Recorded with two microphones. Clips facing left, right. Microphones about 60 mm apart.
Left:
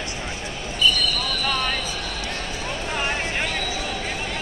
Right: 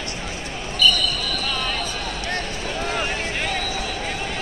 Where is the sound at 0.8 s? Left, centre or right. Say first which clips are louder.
Right 2 dB; right.